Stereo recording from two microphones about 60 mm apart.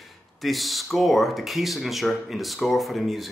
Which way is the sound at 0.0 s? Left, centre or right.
Centre.